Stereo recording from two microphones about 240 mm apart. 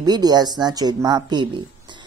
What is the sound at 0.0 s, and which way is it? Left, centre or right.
Speech, centre.